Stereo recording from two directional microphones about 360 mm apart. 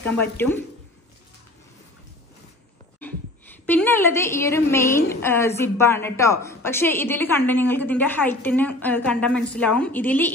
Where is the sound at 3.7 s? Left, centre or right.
Centre.